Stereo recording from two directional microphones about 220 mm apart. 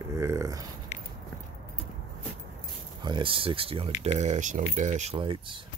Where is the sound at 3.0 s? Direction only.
20° right (ahead or behind).